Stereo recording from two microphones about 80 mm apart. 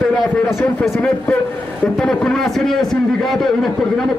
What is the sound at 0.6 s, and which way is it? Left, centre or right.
A man's voice, centre.